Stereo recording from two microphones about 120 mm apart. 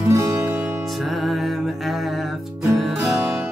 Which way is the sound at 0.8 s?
Centre (ahead or behind).